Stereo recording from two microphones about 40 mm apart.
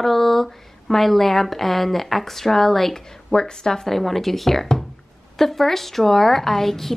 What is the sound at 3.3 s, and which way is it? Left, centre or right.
A woman's voice, centre.